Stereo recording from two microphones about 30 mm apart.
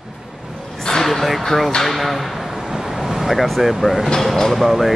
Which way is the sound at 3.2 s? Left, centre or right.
Centre.